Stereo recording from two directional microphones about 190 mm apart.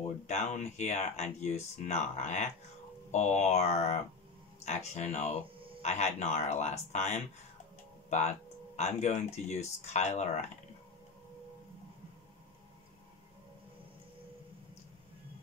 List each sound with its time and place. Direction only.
0.3 s speech: 35° left (ahead or behind)